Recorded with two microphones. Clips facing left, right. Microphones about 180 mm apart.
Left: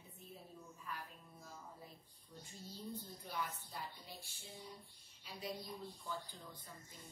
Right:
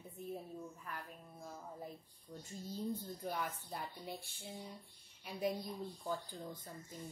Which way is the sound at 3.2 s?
50° right (ahead or behind).